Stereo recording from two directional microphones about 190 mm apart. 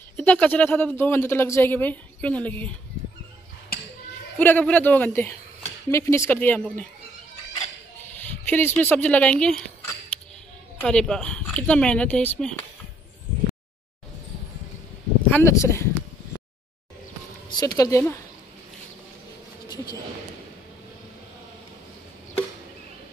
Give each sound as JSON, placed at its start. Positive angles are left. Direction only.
{"t": 0.2, "sound": "speech", "side_deg": 10}
{"t": 4.4, "sound": "speech", "side_deg": 10}
{"t": 8.5, "sound": "speech", "side_deg": 10}
{"t": 10.8, "sound": "speech", "side_deg": 5}
{"t": 15.2, "sound": "speech", "side_deg": 10}
{"t": 17.5, "sound": "speech", "side_deg": 20}